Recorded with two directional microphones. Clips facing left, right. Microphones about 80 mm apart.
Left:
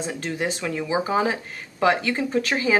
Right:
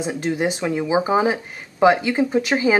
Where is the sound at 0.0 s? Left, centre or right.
Centre.